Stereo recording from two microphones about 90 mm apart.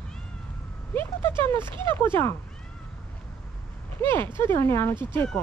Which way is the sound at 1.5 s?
65° right (ahead or behind).